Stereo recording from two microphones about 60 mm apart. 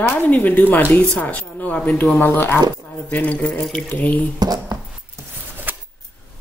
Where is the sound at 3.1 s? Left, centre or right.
Left.